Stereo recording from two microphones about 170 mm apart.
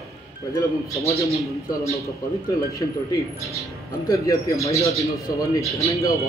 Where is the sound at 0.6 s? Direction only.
20° left (ahead or behind).